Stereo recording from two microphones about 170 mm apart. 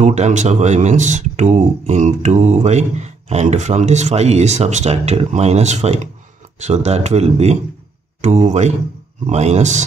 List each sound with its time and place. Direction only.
0.0 s speech: 45° right (ahead or behind)